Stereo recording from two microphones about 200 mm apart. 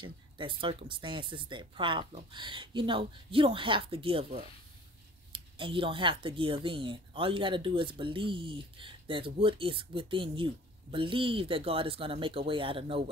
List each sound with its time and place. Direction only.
0.0 s speech: 25° right (ahead or behind)